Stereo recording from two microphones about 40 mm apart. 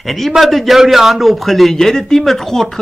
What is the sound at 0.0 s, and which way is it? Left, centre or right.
A man's voice, centre.